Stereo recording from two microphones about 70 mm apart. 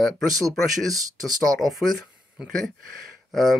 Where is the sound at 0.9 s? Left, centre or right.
Right.